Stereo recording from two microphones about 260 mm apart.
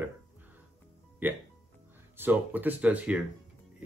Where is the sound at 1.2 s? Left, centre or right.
Centre.